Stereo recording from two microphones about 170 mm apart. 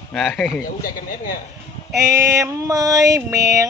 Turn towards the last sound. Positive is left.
turn(degrees=-20)  # may be behind; listen again after turning